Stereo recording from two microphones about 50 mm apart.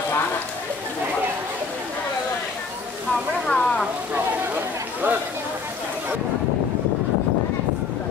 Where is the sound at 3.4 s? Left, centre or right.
Left.